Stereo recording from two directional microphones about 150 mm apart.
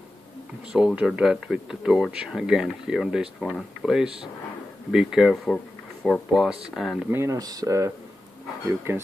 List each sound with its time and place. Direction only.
0.7 s speech: 5° right (ahead or behind)
7.1 s speech: 20° right (ahead or behind)